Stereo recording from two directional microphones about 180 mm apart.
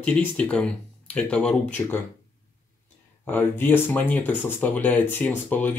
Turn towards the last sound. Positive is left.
turn(degrees=10)  # may be behind; listen again after turning